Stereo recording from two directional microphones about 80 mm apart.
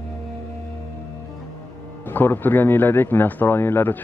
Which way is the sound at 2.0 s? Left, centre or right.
Left.